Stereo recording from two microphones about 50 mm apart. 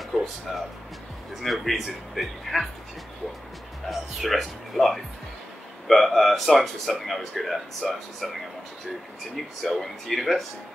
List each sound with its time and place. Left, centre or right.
0.1 s music: centre
1.4 s a man's voice: centre
3.9 s a man's voice: centre
9.7 s a man's voice: centre